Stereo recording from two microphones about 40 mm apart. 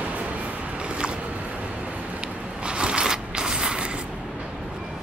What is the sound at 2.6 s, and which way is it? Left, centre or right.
Zipper, right.